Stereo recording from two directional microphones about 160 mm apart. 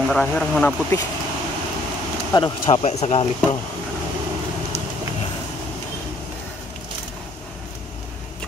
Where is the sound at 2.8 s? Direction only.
45° left (ahead or behind).